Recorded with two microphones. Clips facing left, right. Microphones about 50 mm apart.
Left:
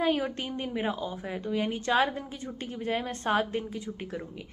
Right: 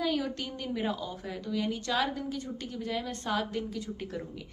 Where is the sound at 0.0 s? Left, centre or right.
Left.